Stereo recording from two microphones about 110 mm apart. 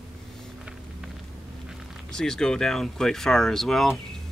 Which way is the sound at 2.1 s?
5° left (ahead or behind).